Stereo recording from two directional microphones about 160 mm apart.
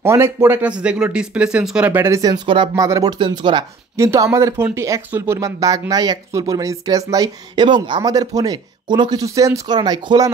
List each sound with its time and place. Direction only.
0.0 s speech: 15° right (ahead or behind); by 2.7 s 30° right (ahead or behind)
2.7 s speech: 20° right (ahead or behind)
3.9 s speech: 15° right (ahead or behind)